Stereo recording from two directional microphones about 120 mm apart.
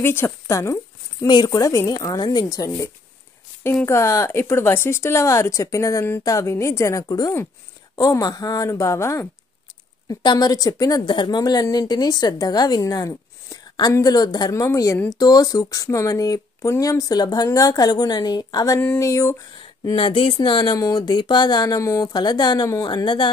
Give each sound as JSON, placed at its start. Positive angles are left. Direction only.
{"t": 0.0, "sound": "a woman's voice", "side_deg": 20}
{"t": 10.0, "sound": "a woman's voice", "side_deg": 35}
{"t": 19.6, "sound": "a woman's voice", "side_deg": 40}